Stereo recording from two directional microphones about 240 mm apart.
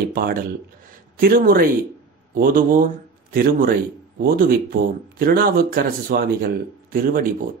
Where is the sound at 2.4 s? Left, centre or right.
Right.